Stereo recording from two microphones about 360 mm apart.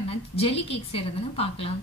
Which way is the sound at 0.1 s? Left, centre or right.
Centre.